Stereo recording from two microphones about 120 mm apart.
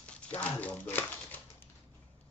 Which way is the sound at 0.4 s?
15° left (ahead or behind).